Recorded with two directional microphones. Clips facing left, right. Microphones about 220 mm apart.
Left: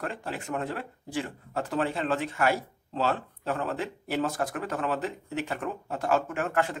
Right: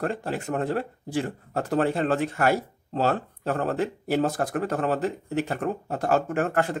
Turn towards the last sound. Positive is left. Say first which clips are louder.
# right 4 dB
turn(degrees=-40)  # may be behind; listen again after turning